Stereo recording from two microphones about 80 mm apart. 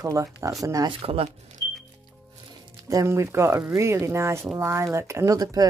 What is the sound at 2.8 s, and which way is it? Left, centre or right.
Music, right.